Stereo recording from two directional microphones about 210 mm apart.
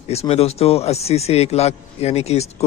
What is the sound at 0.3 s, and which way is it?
A man's voice, 30° left (ahead or behind).